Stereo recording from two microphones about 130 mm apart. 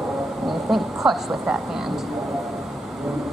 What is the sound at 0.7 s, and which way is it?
Speech, centre (ahead or behind).